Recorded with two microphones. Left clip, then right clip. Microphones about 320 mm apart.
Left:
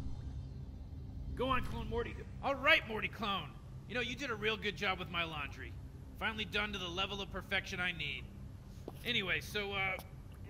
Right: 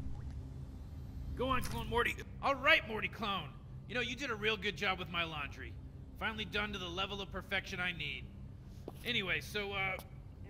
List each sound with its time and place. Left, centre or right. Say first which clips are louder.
1.3 s speech: even; centre
1.9 s a man's voice: right 6 dB; right
2.6 s a man's voice: left 1 dB; centre